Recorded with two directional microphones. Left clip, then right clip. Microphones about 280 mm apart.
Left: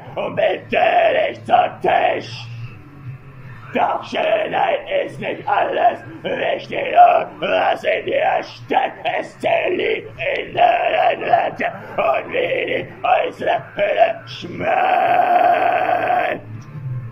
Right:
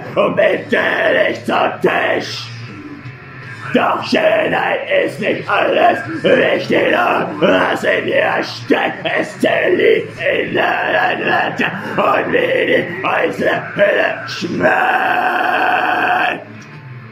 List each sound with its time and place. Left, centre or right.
0.1 s speech: centre
3.7 s speech: right